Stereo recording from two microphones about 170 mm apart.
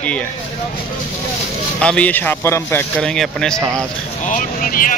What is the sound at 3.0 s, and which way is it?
Speech, 5° left (ahead or behind).